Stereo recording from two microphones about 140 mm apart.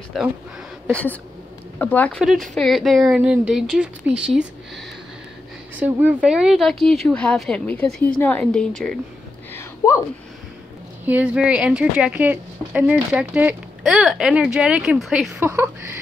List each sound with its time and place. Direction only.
0.2 s speech: centre (ahead or behind)
1.8 s speech: 10° left (ahead or behind)
2.2 s speech: centre (ahead or behind)
5.8 s speech: 10° right (ahead or behind); by 8.9 s 5° left (ahead or behind)
9.5 s a sound: 20° left (ahead or behind)
11.1 s a woman's voice: 10° right (ahead or behind)
15.4 s a woman's voice: 15° right (ahead or behind)